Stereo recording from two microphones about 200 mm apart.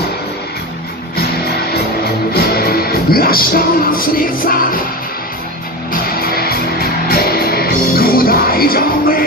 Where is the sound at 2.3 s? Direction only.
50° left (ahead or behind).